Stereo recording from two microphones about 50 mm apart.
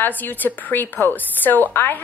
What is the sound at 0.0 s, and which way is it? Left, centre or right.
A woman's voice, left.